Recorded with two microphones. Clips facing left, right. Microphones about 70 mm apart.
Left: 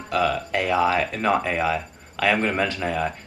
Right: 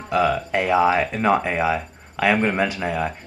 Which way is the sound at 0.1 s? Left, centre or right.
Centre.